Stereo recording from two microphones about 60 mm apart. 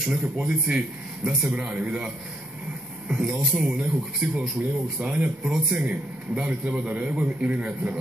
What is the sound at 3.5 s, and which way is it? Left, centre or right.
A man's voice, centre.